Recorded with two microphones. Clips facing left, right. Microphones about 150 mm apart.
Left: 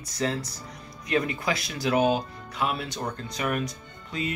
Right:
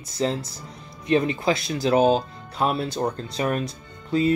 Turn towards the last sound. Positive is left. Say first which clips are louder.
# right 11 dB
turn(degrees=-30)  # may be behind; listen again after turning